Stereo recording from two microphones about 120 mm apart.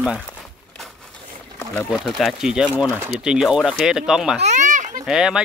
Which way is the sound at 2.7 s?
15° right (ahead or behind).